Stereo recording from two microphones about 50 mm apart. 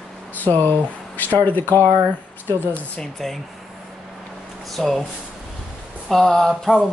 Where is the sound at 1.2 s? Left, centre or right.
Left.